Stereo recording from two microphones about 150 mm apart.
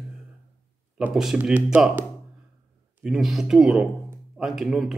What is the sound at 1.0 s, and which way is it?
Speech, 5° right (ahead or behind).